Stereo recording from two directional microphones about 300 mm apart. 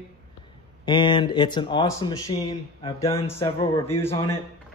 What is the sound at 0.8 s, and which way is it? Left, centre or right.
Speech, centre.